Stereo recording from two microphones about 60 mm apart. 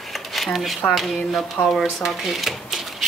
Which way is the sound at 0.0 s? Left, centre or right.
Centre.